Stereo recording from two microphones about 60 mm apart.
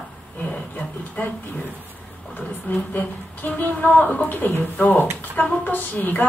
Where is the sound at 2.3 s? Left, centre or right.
Left.